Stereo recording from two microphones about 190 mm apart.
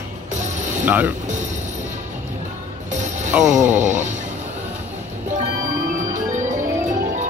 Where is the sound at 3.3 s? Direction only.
5° right (ahead or behind).